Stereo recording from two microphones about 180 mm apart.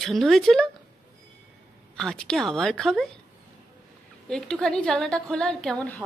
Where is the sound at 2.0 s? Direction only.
5° left (ahead or behind).